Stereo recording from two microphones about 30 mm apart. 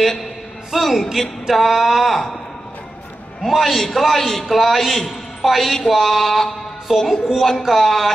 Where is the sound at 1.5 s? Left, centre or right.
Centre.